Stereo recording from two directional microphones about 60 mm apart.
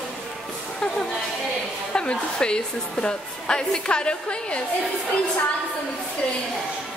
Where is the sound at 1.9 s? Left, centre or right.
Centre.